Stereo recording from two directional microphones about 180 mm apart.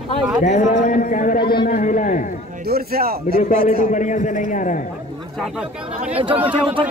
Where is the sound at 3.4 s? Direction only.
40° left (ahead or behind).